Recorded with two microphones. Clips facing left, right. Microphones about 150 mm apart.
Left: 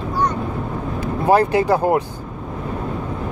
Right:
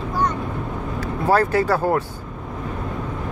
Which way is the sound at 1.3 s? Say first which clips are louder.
Left 3 dB; 15° left (ahead or behind).